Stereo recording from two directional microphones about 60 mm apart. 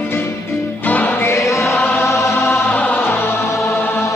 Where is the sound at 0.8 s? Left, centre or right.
Left.